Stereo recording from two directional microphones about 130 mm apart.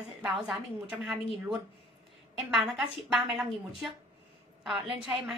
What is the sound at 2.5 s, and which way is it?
Speech, centre (ahead or behind).